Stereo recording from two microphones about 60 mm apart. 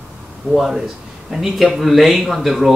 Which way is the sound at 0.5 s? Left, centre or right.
Centre.